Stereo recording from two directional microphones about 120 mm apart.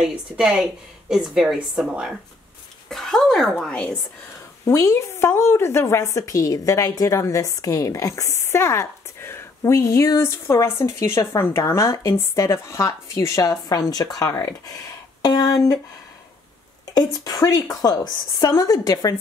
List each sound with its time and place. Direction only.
0.0 s a woman's voice: 5° right (ahead or behind)
4.6 s a woman's voice: 25° left (ahead or behind)
16.8 s a woman's voice: 30° left (ahead or behind)